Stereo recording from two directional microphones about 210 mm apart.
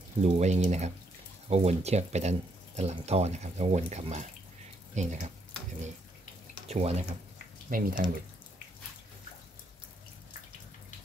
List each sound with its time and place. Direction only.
0.2 s speech: 30° right (ahead or behind)
6.7 s speech: 30° right (ahead or behind)
7.7 s speech: 40° right (ahead or behind)